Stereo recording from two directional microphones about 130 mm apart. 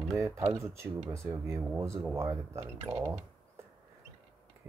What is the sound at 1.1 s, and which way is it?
Speech, 20° right (ahead or behind).